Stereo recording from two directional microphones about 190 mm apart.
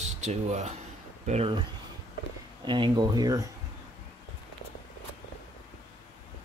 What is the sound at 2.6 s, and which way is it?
Speech, 25° right (ahead or behind).